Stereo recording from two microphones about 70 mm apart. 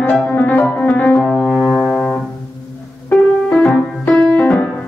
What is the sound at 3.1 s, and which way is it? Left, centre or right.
Music, centre.